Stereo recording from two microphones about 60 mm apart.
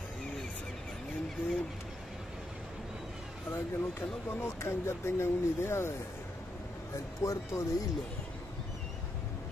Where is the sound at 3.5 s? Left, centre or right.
Left.